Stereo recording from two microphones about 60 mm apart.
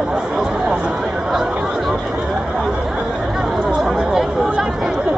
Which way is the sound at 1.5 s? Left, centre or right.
Centre.